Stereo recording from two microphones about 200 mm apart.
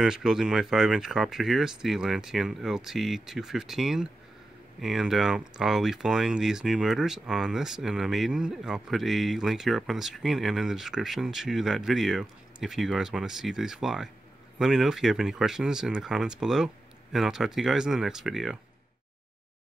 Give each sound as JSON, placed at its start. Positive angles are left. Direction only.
{"t": 0.0, "sound": "speech", "side_deg": -5}